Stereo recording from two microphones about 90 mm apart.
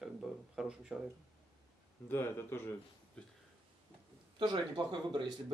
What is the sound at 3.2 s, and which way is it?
Speech, 10° left (ahead or behind).